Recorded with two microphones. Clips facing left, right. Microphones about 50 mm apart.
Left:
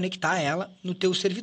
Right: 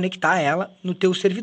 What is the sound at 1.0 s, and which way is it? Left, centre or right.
Speech, right.